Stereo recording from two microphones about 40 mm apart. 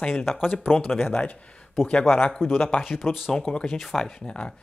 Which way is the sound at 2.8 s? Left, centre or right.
Centre.